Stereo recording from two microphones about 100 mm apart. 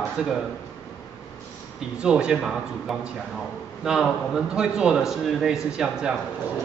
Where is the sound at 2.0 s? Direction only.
10° right (ahead or behind).